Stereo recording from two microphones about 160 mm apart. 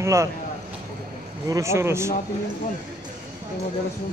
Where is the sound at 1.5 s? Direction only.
20° right (ahead or behind).